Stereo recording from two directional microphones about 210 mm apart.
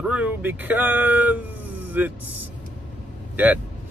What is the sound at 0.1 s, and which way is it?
Speech, 10° right (ahead or behind).